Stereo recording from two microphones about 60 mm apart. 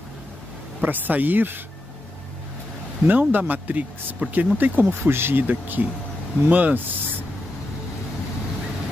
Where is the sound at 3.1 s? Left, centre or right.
Right.